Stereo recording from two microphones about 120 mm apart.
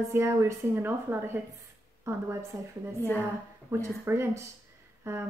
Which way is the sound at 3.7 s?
20° right (ahead or behind).